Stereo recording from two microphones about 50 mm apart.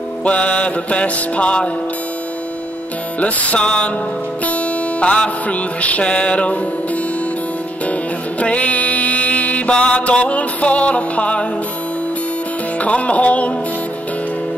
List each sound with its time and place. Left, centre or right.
0.2 s music: left
3.2 s music: left
8.4 s mantra: left
12.8 s music: left